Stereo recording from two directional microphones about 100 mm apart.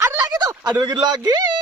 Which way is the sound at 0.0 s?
30° right (ahead or behind).